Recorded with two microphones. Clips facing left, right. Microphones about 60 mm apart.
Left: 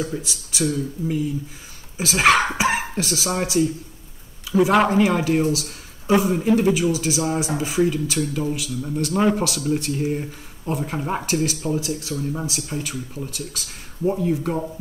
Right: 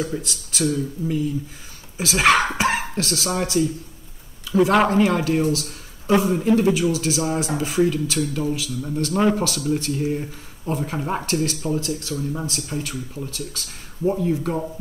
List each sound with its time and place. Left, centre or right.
0.2 s speech: centre
2.4 s dog: centre
3.3 s speech: centre
12.2 s speech: centre
14.0 s speech: centre